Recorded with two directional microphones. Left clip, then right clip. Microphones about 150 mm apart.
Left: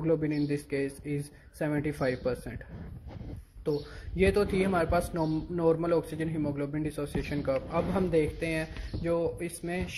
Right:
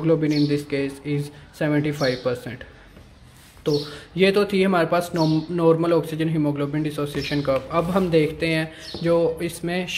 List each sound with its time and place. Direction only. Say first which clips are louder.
0.0 s speech: right 9 dB; 30° left (ahead or behind)
4.2 s speech: right 8 dB; 35° left (ahead or behind)